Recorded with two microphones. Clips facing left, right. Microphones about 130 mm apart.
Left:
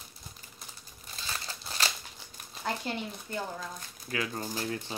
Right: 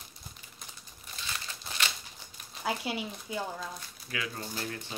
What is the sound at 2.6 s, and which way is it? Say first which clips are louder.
Speech: right 1 dB; 5° right (ahead or behind).